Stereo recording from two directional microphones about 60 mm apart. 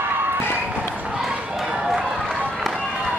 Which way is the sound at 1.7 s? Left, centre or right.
Centre.